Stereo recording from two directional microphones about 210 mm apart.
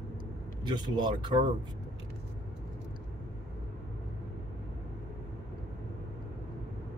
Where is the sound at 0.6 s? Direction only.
20° right (ahead or behind).